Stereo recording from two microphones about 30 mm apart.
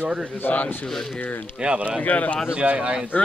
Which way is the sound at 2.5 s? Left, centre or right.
Right.